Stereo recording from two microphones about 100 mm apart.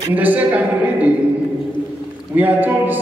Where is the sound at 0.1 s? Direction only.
15° right (ahead or behind).